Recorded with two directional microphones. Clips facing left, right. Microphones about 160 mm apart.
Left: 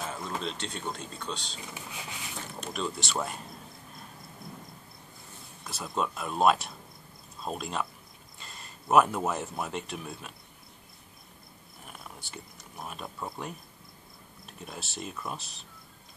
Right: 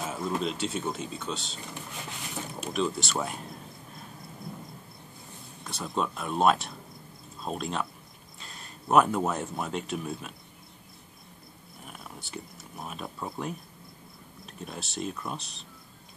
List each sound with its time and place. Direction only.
0.0 s speech: 5° right (ahead or behind)
5.6 s speech: centre (ahead or behind)
11.9 s speech: centre (ahead or behind)